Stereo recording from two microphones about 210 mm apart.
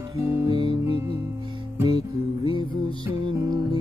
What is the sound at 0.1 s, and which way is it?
Music, 15° right (ahead or behind).